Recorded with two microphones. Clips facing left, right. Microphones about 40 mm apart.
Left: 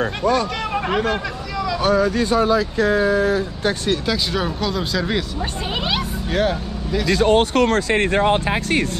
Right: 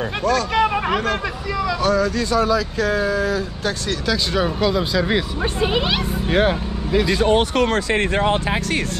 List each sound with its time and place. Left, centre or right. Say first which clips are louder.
0.6 s a sound: right 5 dB; centre
1.8 s speech: left 3 dB; centre; by 3.7 s left
4.1 s speech: right 1 dB; centre
6.3 s speech: right 2 dB; right
7.2 s speech: left 1 dB; left